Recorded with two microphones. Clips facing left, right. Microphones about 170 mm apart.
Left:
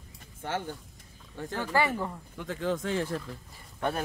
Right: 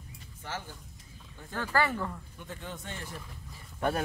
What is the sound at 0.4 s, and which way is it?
Speech, 55° left (ahead or behind).